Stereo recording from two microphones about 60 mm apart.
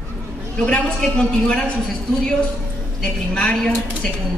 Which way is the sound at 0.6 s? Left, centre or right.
Centre.